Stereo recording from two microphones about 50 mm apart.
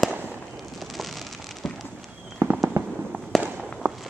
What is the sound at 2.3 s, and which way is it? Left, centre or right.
Fireworks, right.